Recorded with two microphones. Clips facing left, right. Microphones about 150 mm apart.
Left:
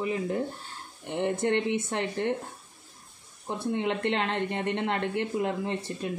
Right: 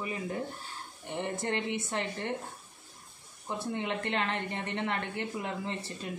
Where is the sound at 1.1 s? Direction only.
65° left (ahead or behind).